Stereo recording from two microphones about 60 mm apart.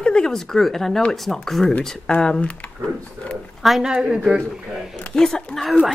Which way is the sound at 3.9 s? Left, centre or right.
Centre.